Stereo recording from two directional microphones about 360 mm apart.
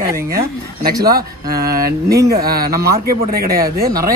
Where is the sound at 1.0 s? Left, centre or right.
Right.